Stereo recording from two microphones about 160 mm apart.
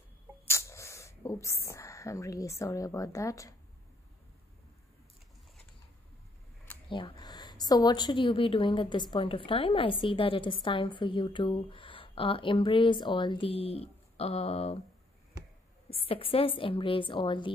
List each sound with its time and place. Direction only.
0.5 s a sound: 15° left (ahead or behind)
2.6 s speech: 20° left (ahead or behind)
6.9 s a woman's voice: 30° left (ahead or behind)
16.1 s a woman's voice: 35° left (ahead or behind)